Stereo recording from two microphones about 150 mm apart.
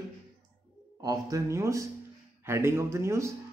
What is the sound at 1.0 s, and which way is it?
Speech, 20° right (ahead or behind).